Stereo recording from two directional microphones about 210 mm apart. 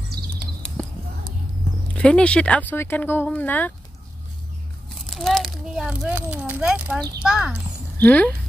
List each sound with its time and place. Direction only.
2.0 s speech: 5° left (ahead or behind)
4.8 s a sound: centre (ahead or behind)
7.2 s speech: 5° right (ahead or behind)